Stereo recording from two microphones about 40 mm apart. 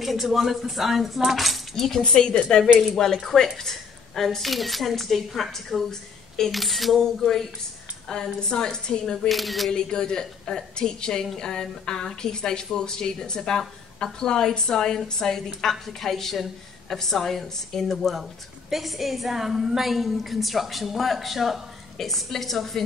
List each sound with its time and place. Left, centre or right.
0.0 s a woman's voice: centre
6.5 s a woman's voice: centre
8.1 s speech: centre
9.3 s a woman's voice: centre
9.7 s a woman's voice: centre